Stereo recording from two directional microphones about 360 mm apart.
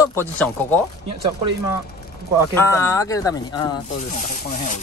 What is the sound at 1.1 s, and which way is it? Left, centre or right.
Speech, centre.